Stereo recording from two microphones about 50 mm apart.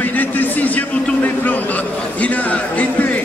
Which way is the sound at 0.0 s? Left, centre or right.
Left.